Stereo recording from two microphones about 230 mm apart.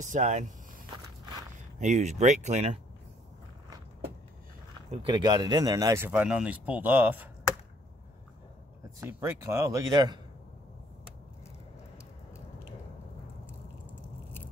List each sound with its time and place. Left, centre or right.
0.0 s speech: right
1.8 s speech: right
4.9 s speech: centre
9.0 s speech: centre